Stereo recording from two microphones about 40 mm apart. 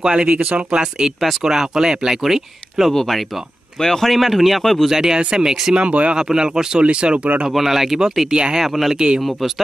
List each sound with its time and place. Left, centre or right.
0.0 s speech: right
2.9 s speech: centre
4.1 s speech: centre
4.8 s speech: centre
5.8 s speech: right
6.1 s speech: centre
6.8 s speech: right
7.5 s speech: centre
8.3 s speech: right
8.5 s speech: centre
8.9 s speech: right